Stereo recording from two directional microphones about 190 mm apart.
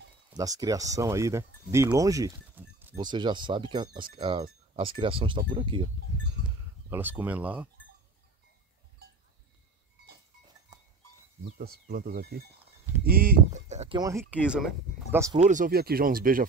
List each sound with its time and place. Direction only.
0.3 s speech: 20° right (ahead or behind)
3.0 s speech: 25° right (ahead or behind)
6.9 s speech: 10° right (ahead or behind)
10.7 s goat: 20° right (ahead or behind)
11.5 s speech: 55° right (ahead or behind); by 13.9 s 35° right (ahead or behind)
13.9 s speech: 15° right (ahead or behind)
14.4 s speech: 5° right (ahead or behind)
15.3 s speech: 40° right (ahead or behind)